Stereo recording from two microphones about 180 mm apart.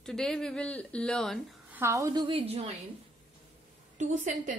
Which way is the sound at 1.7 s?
15° right (ahead or behind).